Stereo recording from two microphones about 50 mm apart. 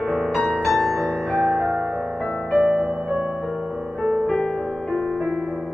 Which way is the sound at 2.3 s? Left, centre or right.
Centre.